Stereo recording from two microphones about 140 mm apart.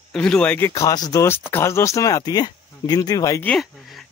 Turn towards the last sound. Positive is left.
turn(degrees=0)  # may be behind; listen again after turning